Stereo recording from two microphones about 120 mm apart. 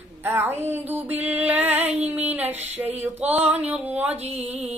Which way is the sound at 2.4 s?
65° right (ahead or behind).